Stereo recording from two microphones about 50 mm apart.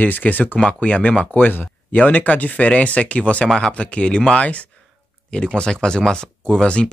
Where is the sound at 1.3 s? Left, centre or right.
Left.